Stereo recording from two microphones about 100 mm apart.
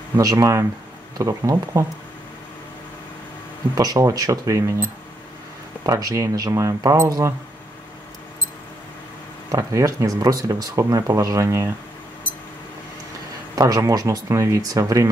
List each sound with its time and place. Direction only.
0.2 s speech: 35° right (ahead or behind)
3.7 s speech: 35° right (ahead or behind)
5.9 s speech: 35° right (ahead or behind)
9.5 s speech: 35° right (ahead or behind)
13.6 s speech: 35° right (ahead or behind)